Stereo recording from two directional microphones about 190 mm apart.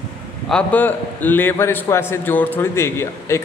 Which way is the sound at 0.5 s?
5° left (ahead or behind).